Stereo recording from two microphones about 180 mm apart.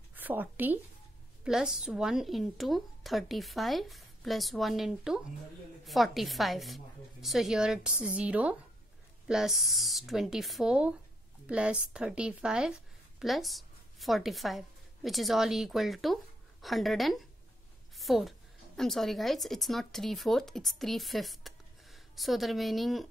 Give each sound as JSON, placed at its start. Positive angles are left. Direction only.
{"t": 0.1, "sound": "a woman's voice", "side_deg": -10}
{"t": 17.9, "sound": "a sound", "side_deg": 0}
{"t": 18.8, "sound": "speech", "side_deg": 0}